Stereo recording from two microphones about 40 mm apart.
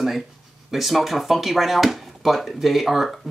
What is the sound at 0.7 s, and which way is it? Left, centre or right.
Speech, centre.